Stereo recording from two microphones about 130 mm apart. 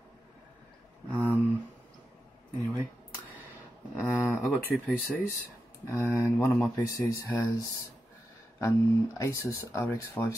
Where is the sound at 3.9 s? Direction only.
15° left (ahead or behind).